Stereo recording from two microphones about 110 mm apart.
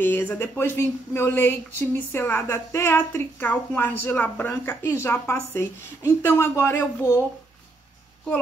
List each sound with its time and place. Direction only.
0.0 s speech: 20° left (ahead or behind)